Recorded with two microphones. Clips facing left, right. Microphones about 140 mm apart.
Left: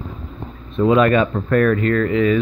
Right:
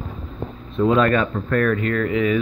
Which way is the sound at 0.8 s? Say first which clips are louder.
Left 3 dB; 5° left (ahead or behind).